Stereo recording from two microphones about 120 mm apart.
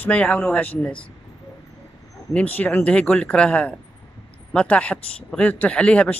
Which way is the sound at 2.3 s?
10° left (ahead or behind).